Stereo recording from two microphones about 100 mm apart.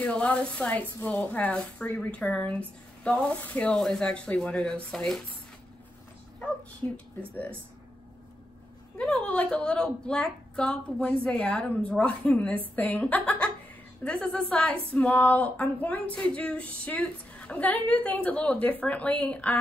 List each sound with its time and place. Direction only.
0.0 s speech: 10° left (ahead or behind)
6.8 s speech: 20° left (ahead or behind)
8.9 s speech: 10° left (ahead or behind)